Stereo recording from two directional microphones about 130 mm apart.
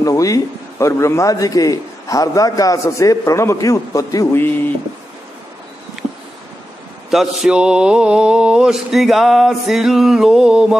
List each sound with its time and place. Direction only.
0.0 s a man's voice: 25° left (ahead or behind)
7.1 s mantra: 5° right (ahead or behind)